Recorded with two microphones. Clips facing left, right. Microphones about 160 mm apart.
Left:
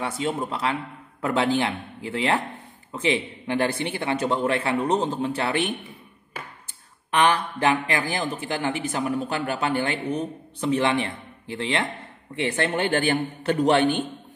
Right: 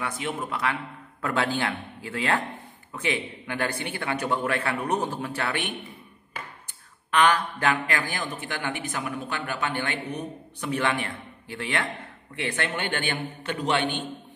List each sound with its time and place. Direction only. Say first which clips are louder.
0.0 s speech: left 4 dB; 25° left (ahead or behind)
7.2 s a man's voice: left 1 dB; 20° left (ahead or behind); by 14.0 s 40° left (ahead or behind)